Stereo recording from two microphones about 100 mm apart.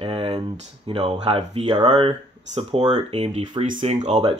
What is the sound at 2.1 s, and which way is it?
Speech, 80° right.